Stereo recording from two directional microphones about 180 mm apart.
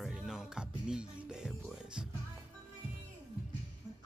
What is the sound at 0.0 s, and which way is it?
Music, 5° right (ahead or behind).